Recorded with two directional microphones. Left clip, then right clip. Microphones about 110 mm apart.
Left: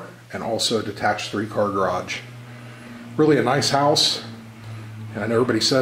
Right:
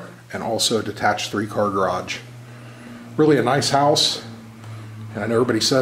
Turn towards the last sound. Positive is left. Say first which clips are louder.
# right 1 dB
turn(degrees=-5)  # may be behind; listen again after turning